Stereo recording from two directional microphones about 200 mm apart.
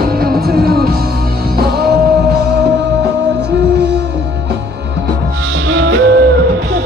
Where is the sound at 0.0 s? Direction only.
50° right (ahead or behind).